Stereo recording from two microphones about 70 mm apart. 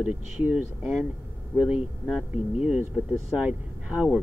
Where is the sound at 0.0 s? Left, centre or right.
Right.